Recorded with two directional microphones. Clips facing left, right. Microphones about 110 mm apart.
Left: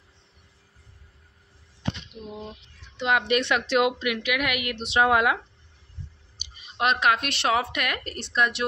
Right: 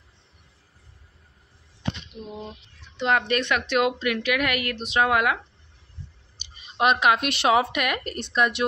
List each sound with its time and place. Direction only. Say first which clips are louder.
2.1 s a sound: right 1 dB; 10° right (ahead or behind)
3.0 s a woman's voice: right 1 dB; 5° left (ahead or behind)
3.3 s a woman's voice: left 1 dB; 20° left (ahead or behind)
4.7 s a woman's voice: left 2 dB; 25° left (ahead or behind)
6.4 s clicking: left 1 dB; 10° left (ahead or behind)
6.8 s speech: right 3 dB; 5° right (ahead or behind)